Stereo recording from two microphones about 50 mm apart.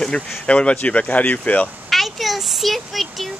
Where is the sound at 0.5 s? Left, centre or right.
Left.